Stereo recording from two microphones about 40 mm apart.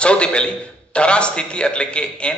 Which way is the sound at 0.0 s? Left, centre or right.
Left.